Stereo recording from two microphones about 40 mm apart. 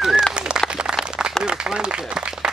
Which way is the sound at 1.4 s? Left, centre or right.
Right.